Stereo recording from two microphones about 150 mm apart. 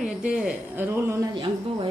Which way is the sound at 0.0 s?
5° right (ahead or behind).